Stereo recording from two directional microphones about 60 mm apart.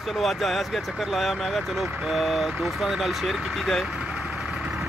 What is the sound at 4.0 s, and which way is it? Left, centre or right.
Vehicle, centre.